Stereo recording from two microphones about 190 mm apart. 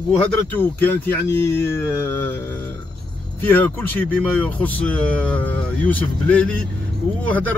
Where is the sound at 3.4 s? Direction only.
10° left (ahead or behind).